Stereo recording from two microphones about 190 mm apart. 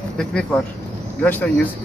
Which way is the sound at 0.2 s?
5° left (ahead or behind).